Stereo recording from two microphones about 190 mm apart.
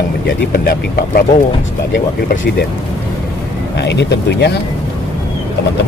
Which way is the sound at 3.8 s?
65° left (ahead or behind).